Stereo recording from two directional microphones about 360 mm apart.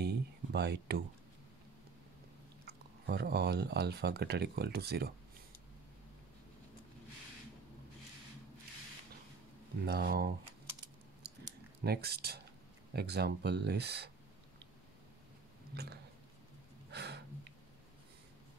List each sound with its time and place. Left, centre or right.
0.0 s a sound: right
2.6 s speech: right
9.8 s speech: right
11.8 s speech: right
15.7 s speech: right
16.9 s gasp: right